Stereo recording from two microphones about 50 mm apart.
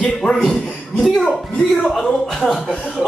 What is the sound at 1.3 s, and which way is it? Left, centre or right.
Speech, left.